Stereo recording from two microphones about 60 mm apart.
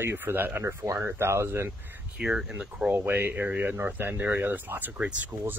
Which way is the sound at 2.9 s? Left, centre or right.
Right.